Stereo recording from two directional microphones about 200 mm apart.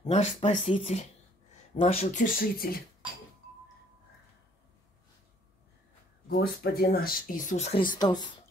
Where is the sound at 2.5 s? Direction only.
45° left (ahead or behind).